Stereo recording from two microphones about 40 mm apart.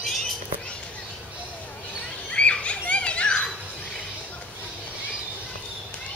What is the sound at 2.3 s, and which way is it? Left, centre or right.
Children playing, left.